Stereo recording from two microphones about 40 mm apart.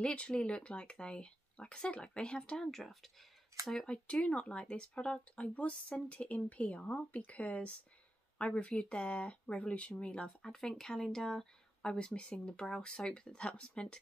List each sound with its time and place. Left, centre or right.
0.0 s speech: left
2.5 s speech: centre
3.8 s a woman's voice: left
10.4 s speech: centre